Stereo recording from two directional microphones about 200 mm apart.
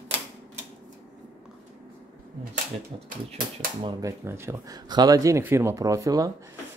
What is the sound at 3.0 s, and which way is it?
Speech, 45° right (ahead or behind).